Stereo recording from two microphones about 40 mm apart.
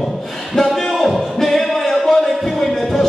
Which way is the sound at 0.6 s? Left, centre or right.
Centre.